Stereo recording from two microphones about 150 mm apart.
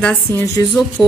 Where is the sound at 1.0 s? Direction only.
Centre (ahead or behind).